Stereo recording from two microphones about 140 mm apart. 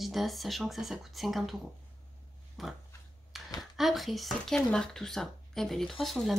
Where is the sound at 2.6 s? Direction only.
Centre (ahead or behind).